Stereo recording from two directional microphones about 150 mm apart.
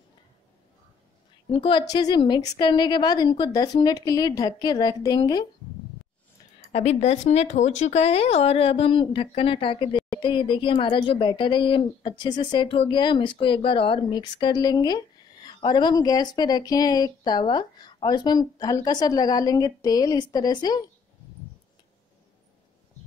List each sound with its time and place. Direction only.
1.5 s speech: 35° left (ahead or behind)
6.7 s speech: 45° left (ahead or behind); by 20.8 s 25° left (ahead or behind)